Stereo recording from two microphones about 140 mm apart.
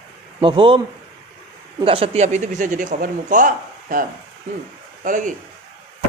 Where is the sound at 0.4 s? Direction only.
40° right (ahead or behind).